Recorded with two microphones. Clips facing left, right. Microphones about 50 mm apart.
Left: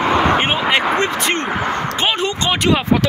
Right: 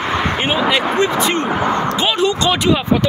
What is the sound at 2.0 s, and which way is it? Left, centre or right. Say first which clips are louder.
Speech: right 3 dB; left.